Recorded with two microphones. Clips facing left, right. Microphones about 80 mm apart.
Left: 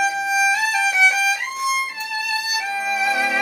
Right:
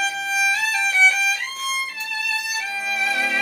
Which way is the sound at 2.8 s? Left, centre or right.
Centre.